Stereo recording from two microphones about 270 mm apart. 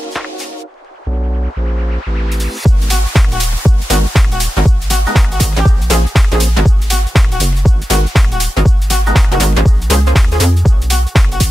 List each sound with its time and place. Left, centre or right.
2.2 s music: centre